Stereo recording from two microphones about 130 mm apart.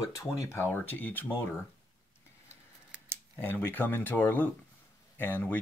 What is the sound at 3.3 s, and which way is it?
Speech, 15° left (ahead or behind).